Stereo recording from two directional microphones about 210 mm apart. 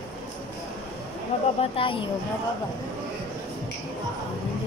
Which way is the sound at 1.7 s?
25° left (ahead or behind).